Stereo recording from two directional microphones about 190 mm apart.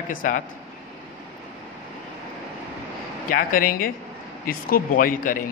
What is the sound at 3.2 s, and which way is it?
A man's voice, 50° left (ahead or behind).